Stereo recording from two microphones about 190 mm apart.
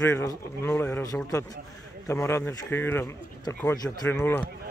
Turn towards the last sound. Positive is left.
turn(degrees=10)  # may be behind; listen again after turning